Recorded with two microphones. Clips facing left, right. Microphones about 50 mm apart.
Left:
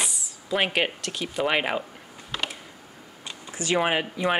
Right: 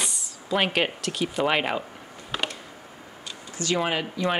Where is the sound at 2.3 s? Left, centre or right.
Centre.